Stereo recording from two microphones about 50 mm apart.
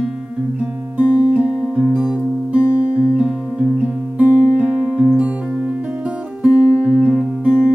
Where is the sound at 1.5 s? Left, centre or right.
Centre.